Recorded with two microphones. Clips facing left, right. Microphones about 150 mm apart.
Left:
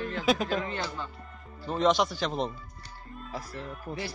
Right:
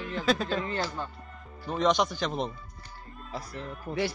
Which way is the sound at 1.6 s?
Centre (ahead or behind).